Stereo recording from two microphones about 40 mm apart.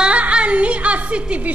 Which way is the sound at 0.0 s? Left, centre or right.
Right.